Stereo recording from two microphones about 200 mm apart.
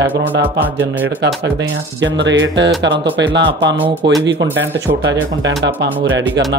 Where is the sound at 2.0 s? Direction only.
65° right (ahead or behind).